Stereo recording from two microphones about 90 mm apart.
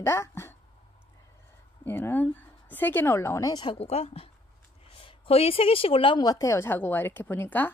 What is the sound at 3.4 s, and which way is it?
Speech, 55° left (ahead or behind).